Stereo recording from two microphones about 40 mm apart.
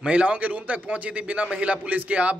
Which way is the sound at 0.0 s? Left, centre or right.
Right.